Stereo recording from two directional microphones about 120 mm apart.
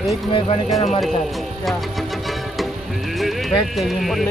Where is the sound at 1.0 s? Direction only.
Centre (ahead or behind).